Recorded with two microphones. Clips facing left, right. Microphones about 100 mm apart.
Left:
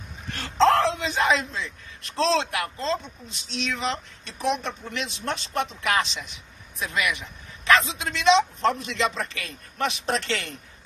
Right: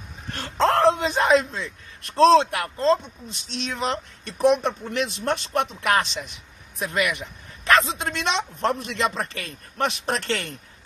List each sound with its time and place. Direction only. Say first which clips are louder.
0.3 s speech: left 2 dB; 40° right (ahead or behind)